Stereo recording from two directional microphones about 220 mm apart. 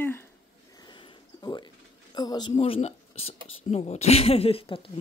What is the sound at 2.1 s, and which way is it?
Speech, 20° left (ahead or behind).